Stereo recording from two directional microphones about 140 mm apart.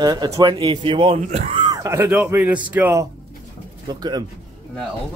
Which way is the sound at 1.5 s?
30° right (ahead or behind).